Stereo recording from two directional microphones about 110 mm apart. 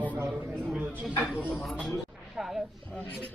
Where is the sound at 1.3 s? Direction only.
15° left (ahead or behind).